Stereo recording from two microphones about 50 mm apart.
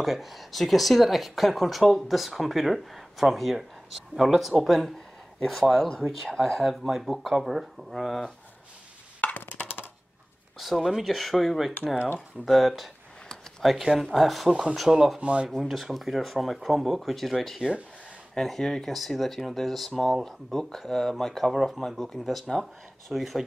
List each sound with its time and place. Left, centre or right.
0.0 s speech: centre
9.2 s a sound: left
10.6 s speech: centre
14.5 s speech: centre
15.5 s speech: centre